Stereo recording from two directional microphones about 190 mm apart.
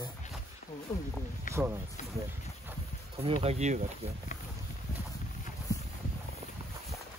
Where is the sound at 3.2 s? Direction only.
30° right (ahead or behind).